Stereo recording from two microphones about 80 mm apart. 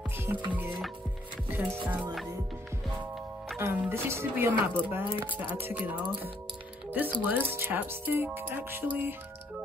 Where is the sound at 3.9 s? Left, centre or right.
Right.